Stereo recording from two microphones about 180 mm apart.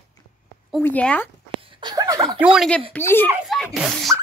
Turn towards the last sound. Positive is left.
turn(degrees=0)  # may be behind; listen again after turning